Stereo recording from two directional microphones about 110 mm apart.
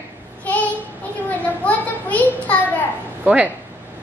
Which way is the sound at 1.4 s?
15° left (ahead or behind).